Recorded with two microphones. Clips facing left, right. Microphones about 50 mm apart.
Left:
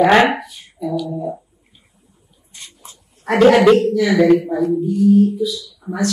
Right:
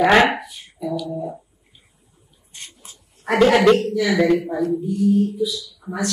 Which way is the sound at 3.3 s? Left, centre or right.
Centre.